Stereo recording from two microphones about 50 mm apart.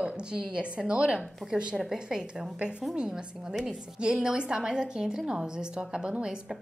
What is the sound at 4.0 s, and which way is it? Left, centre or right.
A woman's voice, centre.